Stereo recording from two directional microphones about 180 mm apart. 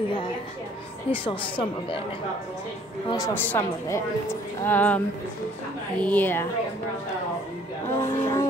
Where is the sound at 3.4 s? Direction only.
10° left (ahead or behind).